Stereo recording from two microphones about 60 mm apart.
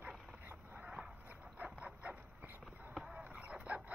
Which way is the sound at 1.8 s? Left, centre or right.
Right.